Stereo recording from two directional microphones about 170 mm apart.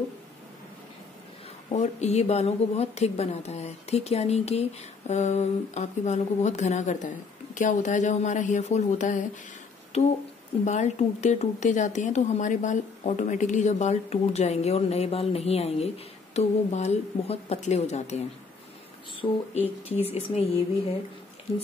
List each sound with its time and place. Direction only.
1.7 s a woman's voice: 40° left (ahead or behind)
19.2 s a woman's voice: 25° left (ahead or behind)